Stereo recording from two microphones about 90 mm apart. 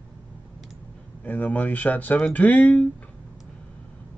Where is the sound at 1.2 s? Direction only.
15° left (ahead or behind).